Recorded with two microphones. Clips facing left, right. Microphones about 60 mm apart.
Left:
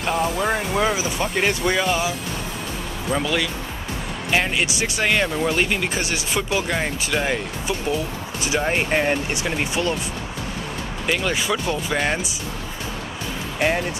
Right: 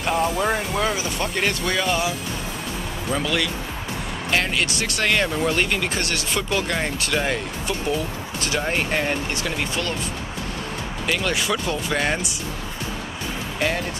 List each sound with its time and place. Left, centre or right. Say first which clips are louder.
0.0 s speech: even; centre
11.1 s speech: left 1 dB; centre
13.6 s speech: left 3 dB; centre